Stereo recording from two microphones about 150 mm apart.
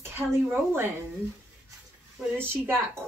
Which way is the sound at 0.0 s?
15° right (ahead or behind).